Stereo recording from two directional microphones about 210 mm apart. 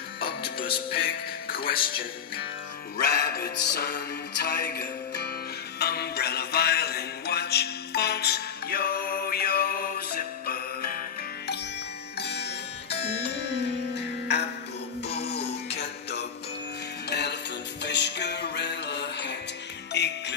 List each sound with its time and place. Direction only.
0.8 s speech: 45° left (ahead or behind)
3.0 s music: 50° left (ahead or behind)